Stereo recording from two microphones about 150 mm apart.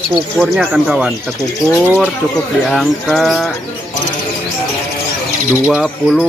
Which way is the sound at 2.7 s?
Centre (ahead or behind).